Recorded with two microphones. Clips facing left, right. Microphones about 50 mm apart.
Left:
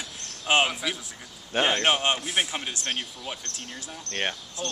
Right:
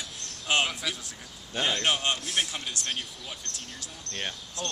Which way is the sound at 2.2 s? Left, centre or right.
Centre.